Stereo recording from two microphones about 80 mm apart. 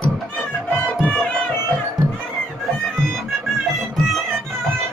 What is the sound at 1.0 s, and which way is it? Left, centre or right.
Music, left.